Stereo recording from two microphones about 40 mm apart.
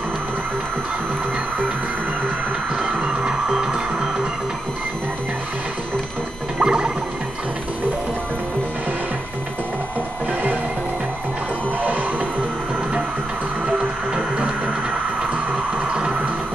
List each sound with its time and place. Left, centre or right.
2.8 s music: right
6.6 s music: right
13.7 s music: right
15.5 s music: right